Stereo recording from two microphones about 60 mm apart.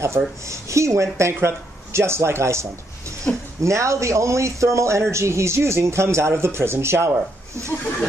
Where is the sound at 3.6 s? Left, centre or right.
Right.